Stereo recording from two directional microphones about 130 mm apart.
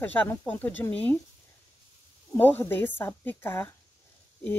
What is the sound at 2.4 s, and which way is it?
Speech, 15° left (ahead or behind).